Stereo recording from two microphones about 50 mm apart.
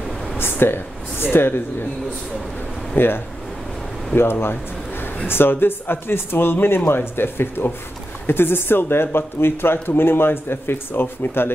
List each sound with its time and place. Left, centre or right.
0.4 s speech: left
2.9 s speech: left